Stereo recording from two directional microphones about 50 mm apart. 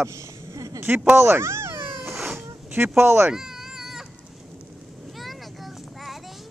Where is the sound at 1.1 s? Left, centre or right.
Right.